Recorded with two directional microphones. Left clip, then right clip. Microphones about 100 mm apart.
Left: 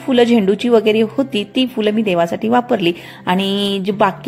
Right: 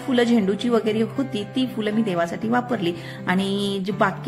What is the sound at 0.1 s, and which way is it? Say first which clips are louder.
A woman's voice: left 8 dB; 35° left (ahead or behind).